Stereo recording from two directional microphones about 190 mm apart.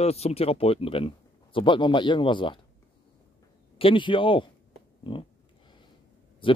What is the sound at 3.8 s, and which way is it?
Speech, 25° left (ahead or behind).